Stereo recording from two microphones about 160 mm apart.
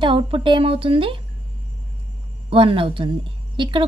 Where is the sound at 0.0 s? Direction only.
30° right (ahead or behind).